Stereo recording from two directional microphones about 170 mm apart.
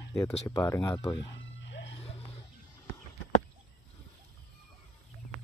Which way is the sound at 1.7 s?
90° left.